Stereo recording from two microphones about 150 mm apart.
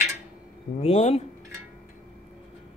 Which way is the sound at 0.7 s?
45° left (ahead or behind).